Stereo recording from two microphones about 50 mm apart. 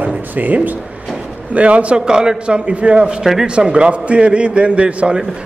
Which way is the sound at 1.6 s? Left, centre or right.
Right.